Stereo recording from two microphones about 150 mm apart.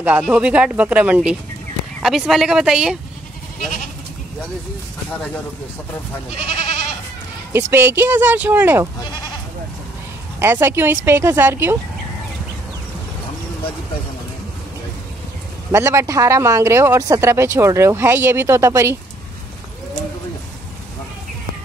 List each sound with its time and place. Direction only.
0.2 s speech: 5° right (ahead or behind)
6.4 s goat: 50° left (ahead or behind)
7.5 s speech: 15° right (ahead or behind)
10.4 s speech: 15° right (ahead or behind)
15.7 s speech: 20° right (ahead or behind)